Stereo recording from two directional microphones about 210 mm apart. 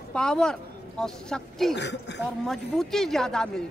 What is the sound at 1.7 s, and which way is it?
Speech, 55° left (ahead or behind).